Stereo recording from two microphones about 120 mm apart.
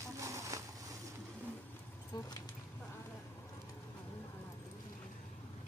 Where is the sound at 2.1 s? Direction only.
35° left (ahead or behind).